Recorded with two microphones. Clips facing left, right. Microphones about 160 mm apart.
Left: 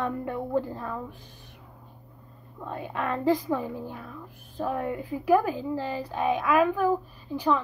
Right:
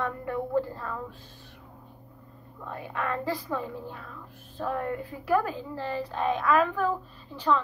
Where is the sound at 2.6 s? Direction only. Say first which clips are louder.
Left 2 dB; 20° left (ahead or behind).